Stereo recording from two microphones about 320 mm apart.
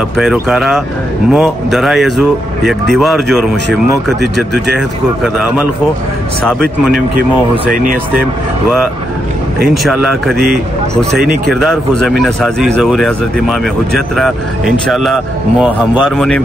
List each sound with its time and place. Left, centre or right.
0.2 s speech: centre
7.7 s speech: right
9.8 s speech: centre